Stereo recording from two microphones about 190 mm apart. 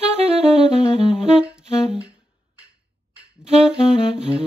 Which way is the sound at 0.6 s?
30° left (ahead or behind).